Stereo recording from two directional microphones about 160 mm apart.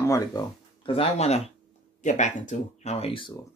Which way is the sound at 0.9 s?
40° left (ahead or behind).